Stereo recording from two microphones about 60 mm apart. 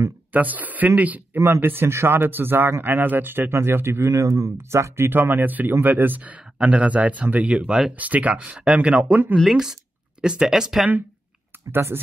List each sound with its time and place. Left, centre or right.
0.3 s speech: right
1.6 s speech: right
4.1 s speech: right
4.6 s speech: right; by 9.2 s centre
9.4 s speech: centre
11.7 s speech: right